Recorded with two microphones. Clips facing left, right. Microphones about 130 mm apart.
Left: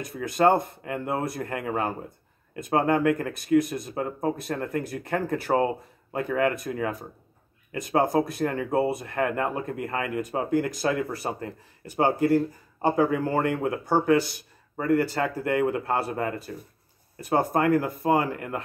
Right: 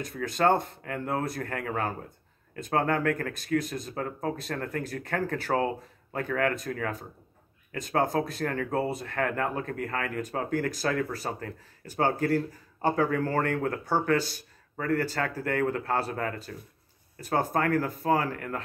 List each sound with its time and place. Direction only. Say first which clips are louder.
0.0 s speech: left 4 dB; 15° left (ahead or behind)